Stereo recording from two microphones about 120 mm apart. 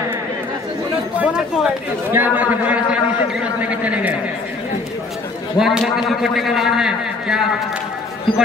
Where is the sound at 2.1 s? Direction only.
15° right (ahead or behind).